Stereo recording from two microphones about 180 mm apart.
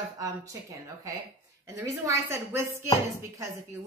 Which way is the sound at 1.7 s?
15° right (ahead or behind).